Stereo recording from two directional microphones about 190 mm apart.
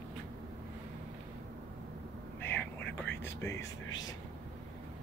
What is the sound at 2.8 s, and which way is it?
Whispering, 65° left (ahead or behind).